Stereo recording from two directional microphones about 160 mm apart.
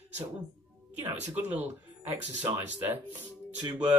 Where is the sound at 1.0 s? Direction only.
10° right (ahead or behind).